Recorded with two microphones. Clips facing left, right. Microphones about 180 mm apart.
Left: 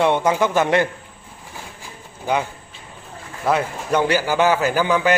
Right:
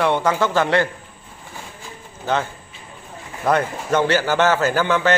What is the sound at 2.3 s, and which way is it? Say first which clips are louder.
Speech: even; 10° left (ahead or behind).